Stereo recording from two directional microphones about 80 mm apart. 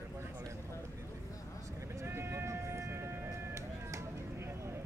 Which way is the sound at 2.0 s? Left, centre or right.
Right.